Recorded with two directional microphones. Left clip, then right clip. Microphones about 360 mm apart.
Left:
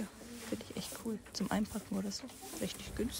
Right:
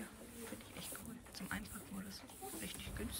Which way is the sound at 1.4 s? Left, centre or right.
Centre.